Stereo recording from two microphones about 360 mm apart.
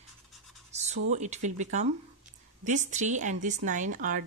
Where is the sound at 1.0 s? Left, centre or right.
Centre.